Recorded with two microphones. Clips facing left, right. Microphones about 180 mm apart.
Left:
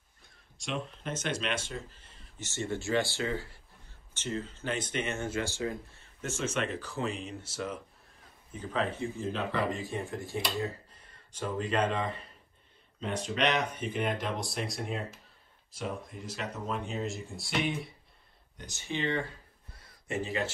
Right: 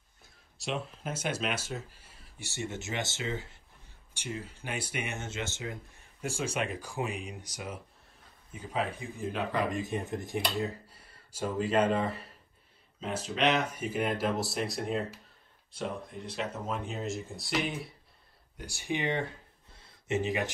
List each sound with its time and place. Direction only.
0.2 s speech: centre (ahead or behind); by 6.0 s 20° right (ahead or behind)
6.2 s speech: 35° right (ahead or behind)
6.7 s speech: 10° right (ahead or behind)
13.0 s speech: centre (ahead or behind)
18.6 s speech: 10° right (ahead or behind)
19.7 s a sound: 25° right (ahead or behind)